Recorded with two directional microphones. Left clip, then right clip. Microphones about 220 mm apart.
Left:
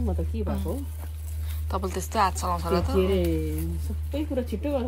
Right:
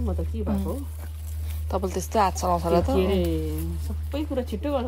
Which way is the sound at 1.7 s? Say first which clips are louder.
Right 3 dB; 15° right (ahead or behind).